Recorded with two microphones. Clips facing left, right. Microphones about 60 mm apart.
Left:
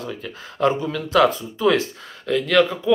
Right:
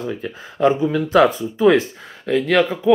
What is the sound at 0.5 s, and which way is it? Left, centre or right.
Speech, centre.